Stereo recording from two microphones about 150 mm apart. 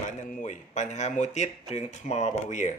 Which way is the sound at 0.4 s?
50° left (ahead or behind).